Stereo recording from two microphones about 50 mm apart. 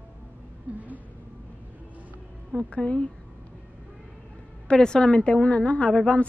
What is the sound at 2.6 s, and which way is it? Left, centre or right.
Speech, left.